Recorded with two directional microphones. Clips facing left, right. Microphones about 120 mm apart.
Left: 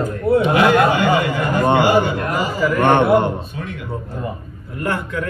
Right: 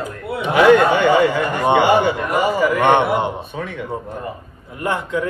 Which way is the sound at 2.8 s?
15° right (ahead or behind).